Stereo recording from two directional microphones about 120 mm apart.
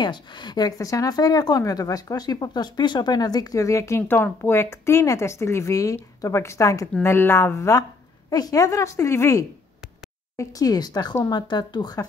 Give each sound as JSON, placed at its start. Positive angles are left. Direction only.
{"t": 0.0, "sound": "a woman's voice", "side_deg": 40}